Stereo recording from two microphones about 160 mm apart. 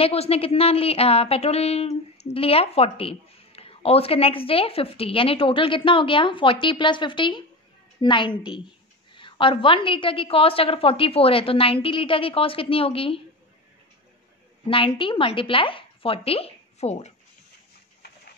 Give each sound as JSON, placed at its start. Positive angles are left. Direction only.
{"t": 0.0, "sound": "a woman's voice", "side_deg": 40}
{"t": 14.7, "sound": "speech", "side_deg": 35}